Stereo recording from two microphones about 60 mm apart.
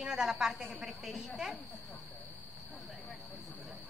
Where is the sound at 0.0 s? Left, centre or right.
Centre.